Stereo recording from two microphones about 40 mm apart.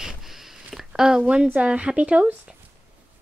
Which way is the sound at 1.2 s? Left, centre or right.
Right.